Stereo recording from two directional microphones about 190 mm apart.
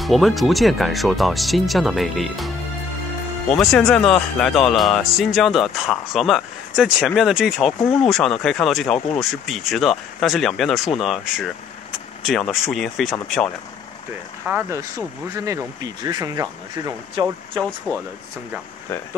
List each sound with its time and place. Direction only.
0.0 s speech: centre (ahead or behind)
3.5 s speech: 5° left (ahead or behind)
14.5 s speech: 5° right (ahead or behind)
15.3 s speech: 15° right (ahead or behind)
17.6 s speech: 10° left (ahead or behind)